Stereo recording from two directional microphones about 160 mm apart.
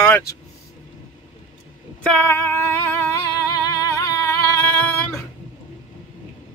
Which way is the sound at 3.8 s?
20° left (ahead or behind).